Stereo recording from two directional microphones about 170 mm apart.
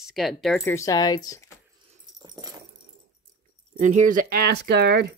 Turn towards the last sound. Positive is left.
turn(degrees=-75)  # may be behind; listen again after turning